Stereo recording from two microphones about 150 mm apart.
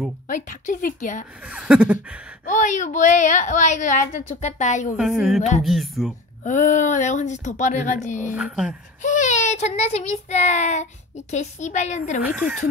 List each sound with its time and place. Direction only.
0.3 s a woman's voice: 60° left (ahead or behind)
1.5 s speech: 5° right (ahead or behind)
2.4 s a woman's voice: 55° left (ahead or behind)
4.9 s speech: 5° right (ahead or behind)
6.4 s a child's voice: 55° left (ahead or behind)
8.3 s speech: 10° right (ahead or behind)
9.0 s a child's voice: 55° left (ahead or behind)
12.2 s speech: 10° right (ahead or behind)